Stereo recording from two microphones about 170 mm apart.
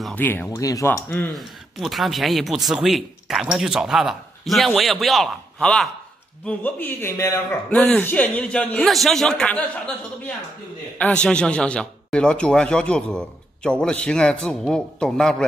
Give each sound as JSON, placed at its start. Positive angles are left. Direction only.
{"t": 0.0, "sound": "a man's voice", "side_deg": 10}
{"t": 1.8, "sound": "a man's voice", "side_deg": 0}